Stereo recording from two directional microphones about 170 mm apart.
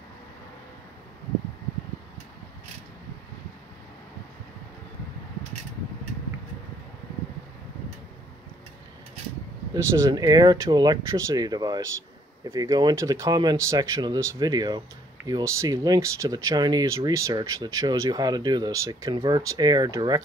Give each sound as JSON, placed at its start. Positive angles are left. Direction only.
{"t": 9.8, "sound": "speech", "side_deg": -20}